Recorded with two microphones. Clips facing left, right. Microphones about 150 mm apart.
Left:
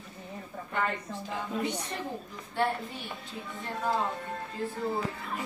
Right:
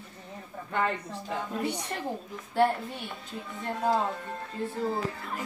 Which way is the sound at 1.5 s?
10° right (ahead or behind).